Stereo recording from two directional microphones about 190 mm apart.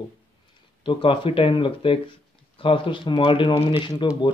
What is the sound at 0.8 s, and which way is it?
Speech, 25° left (ahead or behind).